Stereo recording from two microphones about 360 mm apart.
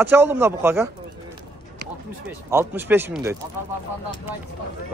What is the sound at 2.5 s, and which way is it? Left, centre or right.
Speech, centre.